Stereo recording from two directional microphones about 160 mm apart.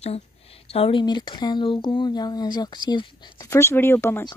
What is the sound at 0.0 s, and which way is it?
Speech, 40° left (ahead or behind).